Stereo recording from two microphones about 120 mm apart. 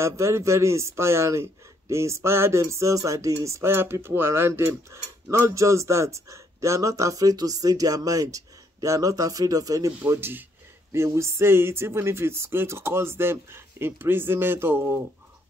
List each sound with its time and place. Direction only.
0.0 s speech: 25° right (ahead or behind)